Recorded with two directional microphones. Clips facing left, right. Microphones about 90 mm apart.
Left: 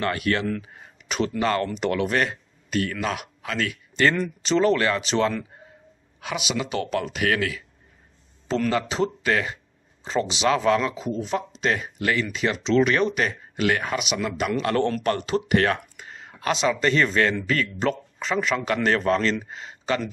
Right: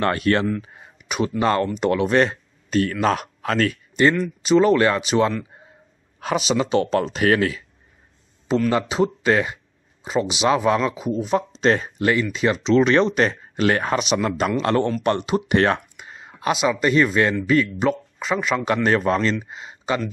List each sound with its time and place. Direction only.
0.0 s speech: 35° right (ahead or behind)
1.0 s speech: 15° right (ahead or behind); by 3.7 s 40° right (ahead or behind)
3.9 s speech: 15° right (ahead or behind)
6.1 s speech: 35° right (ahead or behind)
8.6 s speech: 20° right (ahead or behind)
11.3 s speech: 30° right (ahead or behind)